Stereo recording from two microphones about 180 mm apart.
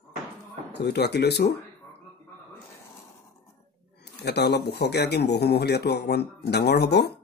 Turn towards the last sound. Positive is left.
turn(degrees=65)  # may be behind; listen again after turning